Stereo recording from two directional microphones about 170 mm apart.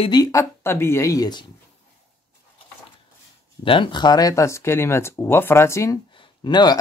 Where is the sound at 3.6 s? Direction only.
30° left (ahead or behind).